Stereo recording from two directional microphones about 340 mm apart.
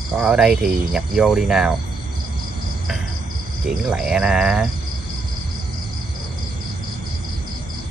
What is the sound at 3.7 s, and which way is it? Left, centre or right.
Speech, centre.